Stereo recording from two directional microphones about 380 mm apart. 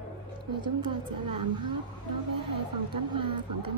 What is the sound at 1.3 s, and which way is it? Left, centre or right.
Speech, right.